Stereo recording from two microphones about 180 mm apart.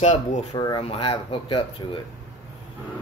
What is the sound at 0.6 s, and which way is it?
Speech, 25° left (ahead or behind).